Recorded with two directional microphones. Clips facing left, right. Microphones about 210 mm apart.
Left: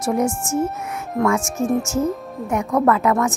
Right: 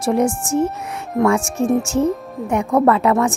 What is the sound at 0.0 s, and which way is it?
Speech, 30° right (ahead or behind).